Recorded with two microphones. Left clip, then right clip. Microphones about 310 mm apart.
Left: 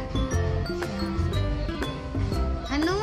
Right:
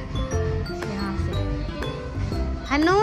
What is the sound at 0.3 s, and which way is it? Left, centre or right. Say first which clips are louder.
Music: right 2 dB; centre.